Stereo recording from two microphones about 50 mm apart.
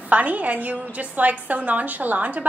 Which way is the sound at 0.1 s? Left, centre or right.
Right.